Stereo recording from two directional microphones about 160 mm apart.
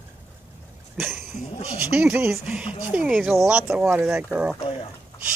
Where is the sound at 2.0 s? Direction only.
15° right (ahead or behind).